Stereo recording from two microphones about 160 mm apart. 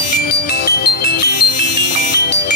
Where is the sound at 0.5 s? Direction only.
75° left (ahead or behind).